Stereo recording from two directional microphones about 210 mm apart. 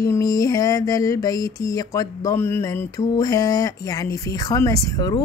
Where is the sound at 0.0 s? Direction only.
15° left (ahead or behind).